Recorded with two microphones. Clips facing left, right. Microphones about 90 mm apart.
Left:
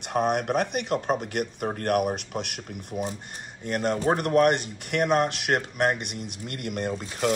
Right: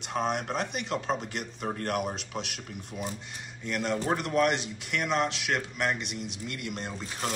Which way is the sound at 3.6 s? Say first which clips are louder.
Left 5 dB; 45° left (ahead or behind).